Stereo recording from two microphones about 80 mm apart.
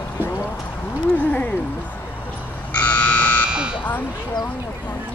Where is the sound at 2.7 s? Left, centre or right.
Centre.